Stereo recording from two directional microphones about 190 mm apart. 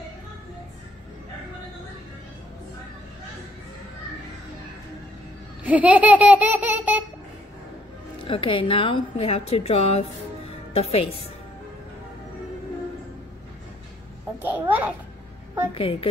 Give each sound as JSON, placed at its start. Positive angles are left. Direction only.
{"t": 5.6, "sound": "a sound", "side_deg": -10}
{"t": 8.3, "sound": "a woman's voice", "side_deg": 25}
{"t": 14.4, "sound": "babbling", "side_deg": -10}
{"t": 15.7, "sound": "a woman's voice", "side_deg": 30}